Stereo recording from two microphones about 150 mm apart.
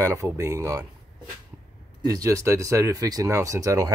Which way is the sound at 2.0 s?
25° right (ahead or behind).